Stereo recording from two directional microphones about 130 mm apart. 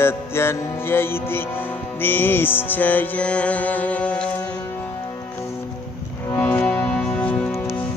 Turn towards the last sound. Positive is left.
turn(degrees=10)  # may be behind; listen again after turning